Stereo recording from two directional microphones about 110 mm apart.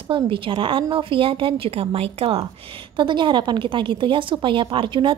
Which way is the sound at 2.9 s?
45° right (ahead or behind).